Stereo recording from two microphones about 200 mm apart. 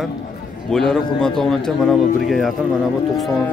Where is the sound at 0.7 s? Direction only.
Centre (ahead or behind).